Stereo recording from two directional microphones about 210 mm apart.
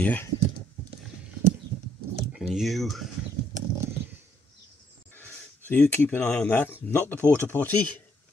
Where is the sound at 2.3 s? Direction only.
Centre (ahead or behind).